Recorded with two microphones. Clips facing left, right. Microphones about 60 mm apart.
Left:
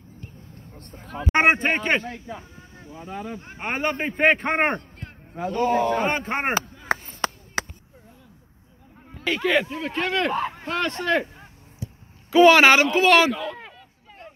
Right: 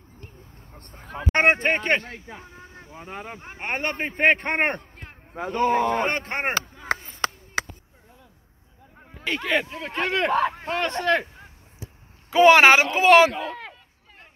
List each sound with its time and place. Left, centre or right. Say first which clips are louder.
0.7 s vehicle: left 1 dB; centre
1.3 s a man's voice: left 1 dB; centre
2.2 s a sound: left 3 dB; right
2.9 s speech: left 3 dB; right
3.3 s speech: left 1 dB; right
3.6 s a man's voice: left 2 dB; centre
5.3 s a man's voice: even; right
6.0 s a man's voice: left 2 dB; centre
6.9 s chop: left 1 dB; centre
9.2 s a man's voice: left 3 dB; centre
10.0 s speech: right 3 dB; right
12.3 s speech: even; right